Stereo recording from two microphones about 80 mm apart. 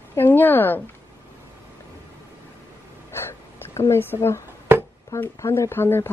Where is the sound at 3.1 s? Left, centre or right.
Left.